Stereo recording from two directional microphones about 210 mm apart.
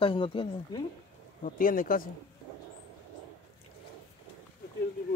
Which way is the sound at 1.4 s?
40° left (ahead or behind).